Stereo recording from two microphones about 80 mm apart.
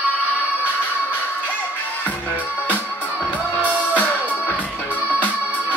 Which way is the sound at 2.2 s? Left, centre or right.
Left.